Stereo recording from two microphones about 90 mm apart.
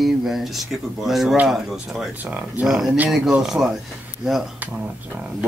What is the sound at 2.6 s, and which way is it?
Speech, 5° right (ahead or behind).